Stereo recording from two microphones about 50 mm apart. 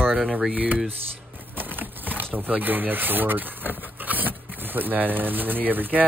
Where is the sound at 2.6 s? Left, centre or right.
Right.